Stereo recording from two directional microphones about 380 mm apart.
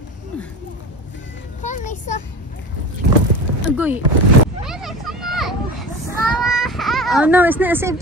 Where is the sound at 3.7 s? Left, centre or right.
Centre.